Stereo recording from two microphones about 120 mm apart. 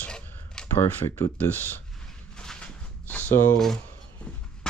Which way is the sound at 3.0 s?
15° left (ahead or behind).